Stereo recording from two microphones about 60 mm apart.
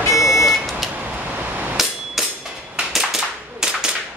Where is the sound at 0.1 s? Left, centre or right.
Left.